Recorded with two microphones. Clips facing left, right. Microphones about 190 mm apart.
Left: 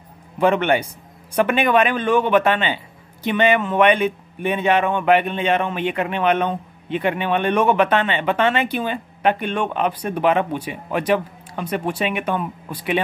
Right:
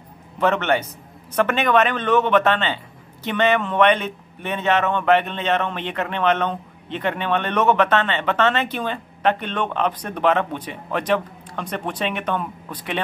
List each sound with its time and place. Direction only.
0.4 s a man's voice: 10° left (ahead or behind)